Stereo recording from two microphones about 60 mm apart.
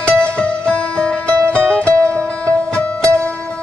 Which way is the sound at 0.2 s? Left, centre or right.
Centre.